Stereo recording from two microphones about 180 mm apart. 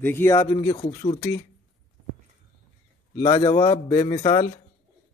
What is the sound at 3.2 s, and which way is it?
A man's voice, 20° left (ahead or behind).